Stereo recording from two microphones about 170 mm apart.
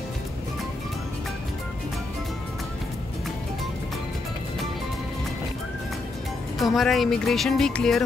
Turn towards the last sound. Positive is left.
turn(degrees=5)  # may be behind; listen again after turning